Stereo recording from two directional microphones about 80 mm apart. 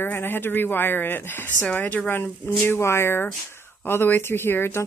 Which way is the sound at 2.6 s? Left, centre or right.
Left.